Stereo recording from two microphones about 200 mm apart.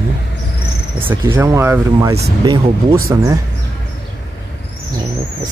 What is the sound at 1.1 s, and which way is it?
Speech, 10° right (ahead or behind).